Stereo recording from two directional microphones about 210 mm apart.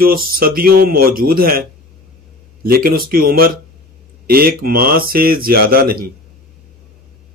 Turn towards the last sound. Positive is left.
turn(degrees=-45)  # may be behind; listen again after turning